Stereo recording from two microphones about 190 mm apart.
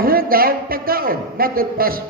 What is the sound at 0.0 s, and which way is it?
A man's voice, 50° right (ahead or behind).